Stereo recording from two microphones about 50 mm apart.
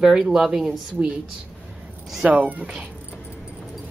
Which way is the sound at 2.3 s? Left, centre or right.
Right.